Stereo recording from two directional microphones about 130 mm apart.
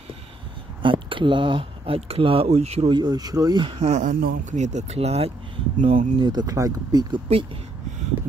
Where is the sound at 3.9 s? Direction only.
75° right (ahead or behind); by 6.0 s 45° right (ahead or behind).